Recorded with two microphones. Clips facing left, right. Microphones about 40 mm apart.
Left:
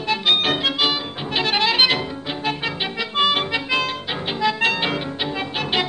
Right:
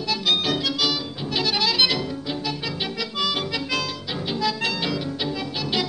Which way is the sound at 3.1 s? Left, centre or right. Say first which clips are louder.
Left 7 dB; left.